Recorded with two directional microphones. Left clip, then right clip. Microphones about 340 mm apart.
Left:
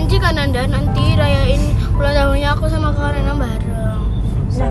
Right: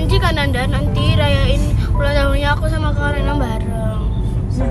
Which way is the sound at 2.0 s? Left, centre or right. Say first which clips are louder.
Left 2 dB; centre.